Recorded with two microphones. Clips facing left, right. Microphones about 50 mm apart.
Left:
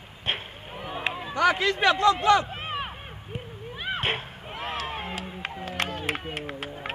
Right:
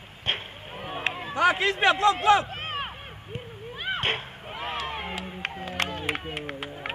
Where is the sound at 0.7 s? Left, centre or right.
Centre.